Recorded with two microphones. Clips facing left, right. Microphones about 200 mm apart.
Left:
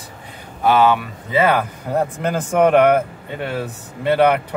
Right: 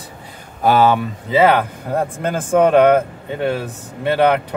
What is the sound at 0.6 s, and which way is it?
Speech, 40° right (ahead or behind).